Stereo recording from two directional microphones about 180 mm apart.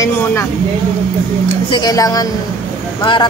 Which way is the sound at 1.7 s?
20° left (ahead or behind).